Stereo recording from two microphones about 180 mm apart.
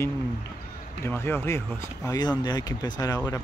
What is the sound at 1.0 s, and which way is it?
Speech, 15° left (ahead or behind).